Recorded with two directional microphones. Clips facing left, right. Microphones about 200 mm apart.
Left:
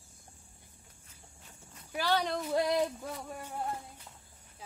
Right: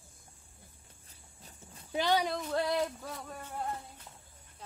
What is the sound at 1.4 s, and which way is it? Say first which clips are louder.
Livestock: right 3 dB; 30° right (ahead or behind).